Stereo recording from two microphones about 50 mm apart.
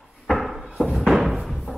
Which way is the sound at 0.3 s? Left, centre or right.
Centre.